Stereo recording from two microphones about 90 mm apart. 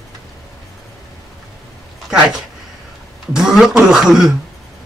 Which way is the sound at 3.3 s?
5° right (ahead or behind).